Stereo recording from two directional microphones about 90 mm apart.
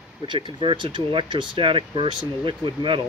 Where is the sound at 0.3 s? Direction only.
65° right (ahead or behind).